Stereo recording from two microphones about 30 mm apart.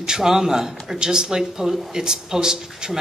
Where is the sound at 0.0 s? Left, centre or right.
Centre.